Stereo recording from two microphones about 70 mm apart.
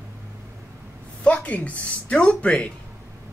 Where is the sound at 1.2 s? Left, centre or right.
Left.